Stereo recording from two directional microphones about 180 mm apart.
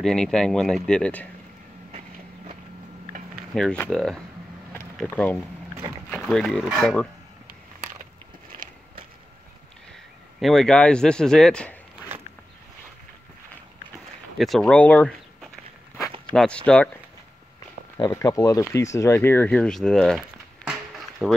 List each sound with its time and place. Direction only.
0.0 s speech: centre (ahead or behind)
3.5 s speech: 5° left (ahead or behind)
8.0 s biting: 50° right (ahead or behind)
10.4 s speech: centre (ahead or behind)
14.4 s speech: 5° left (ahead or behind)
17.9 s speech: 20° left (ahead or behind); by 21.3 s 10° right (ahead or behind)